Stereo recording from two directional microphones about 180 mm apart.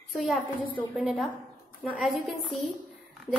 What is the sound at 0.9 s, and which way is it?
A woman's voice, centre (ahead or behind).